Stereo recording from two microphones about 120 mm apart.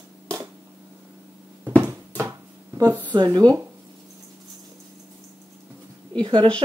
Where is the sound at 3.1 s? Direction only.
35° right (ahead or behind).